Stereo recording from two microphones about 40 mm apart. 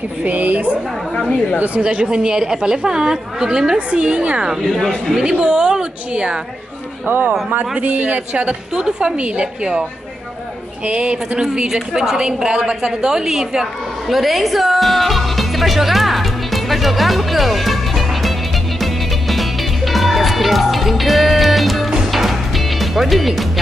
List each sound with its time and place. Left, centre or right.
0.2 s a man's voice: right
1.8 s a man's voice: right
2.0 s a woman's voice: centre
3.7 s a woman's voice: right
4.6 s speech: centre
5.1 s a woman's voice: right
7.1 s a man's voice: right
8.7 s a woman's voice: right
10.9 s a woman's voice: right
14.0 s music: centre